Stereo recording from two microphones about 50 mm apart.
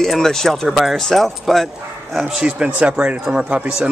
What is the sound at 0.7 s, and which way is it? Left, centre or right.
Speech, centre.